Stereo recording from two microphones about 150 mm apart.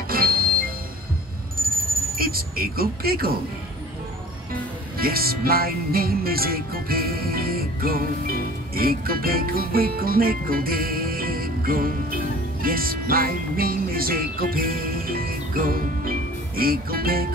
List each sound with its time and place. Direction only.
0.1 s music: 75° right (ahead or behind)
4.9 s music: 85° right